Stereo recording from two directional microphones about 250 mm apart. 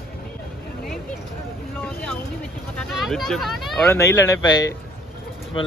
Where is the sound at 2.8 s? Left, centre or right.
Centre.